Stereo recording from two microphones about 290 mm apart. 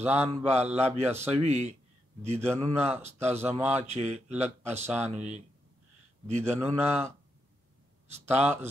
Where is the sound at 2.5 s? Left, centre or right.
Centre.